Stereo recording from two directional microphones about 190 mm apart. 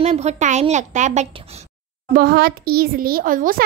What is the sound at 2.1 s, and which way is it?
A woman's voice, 55° right (ahead or behind).